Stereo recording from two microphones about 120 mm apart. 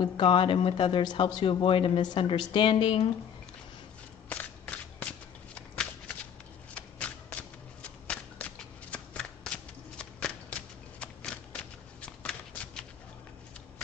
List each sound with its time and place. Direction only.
0.0 s speech: 45° left (ahead or behind)
4.3 s shuffling cards: 10° left (ahead or behind)